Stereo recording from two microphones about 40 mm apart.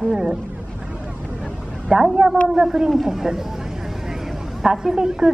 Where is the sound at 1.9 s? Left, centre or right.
Centre.